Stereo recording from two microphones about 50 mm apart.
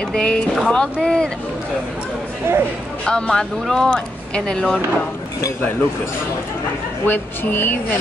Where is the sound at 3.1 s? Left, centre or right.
Centre.